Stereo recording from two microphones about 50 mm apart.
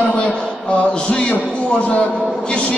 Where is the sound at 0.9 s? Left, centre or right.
Left.